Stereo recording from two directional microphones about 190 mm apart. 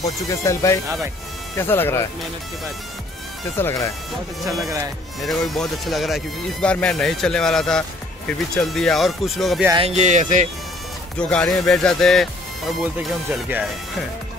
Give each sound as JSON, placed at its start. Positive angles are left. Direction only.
{"t": 0.0, "sound": "speech", "side_deg": 20}
{"t": 3.5, "sound": "speech", "side_deg": 15}
{"t": 4.4, "sound": "speech", "side_deg": 0}
{"t": 9.8, "sound": "speech", "side_deg": -35}
{"t": 11.1, "sound": "speech", "side_deg": 5}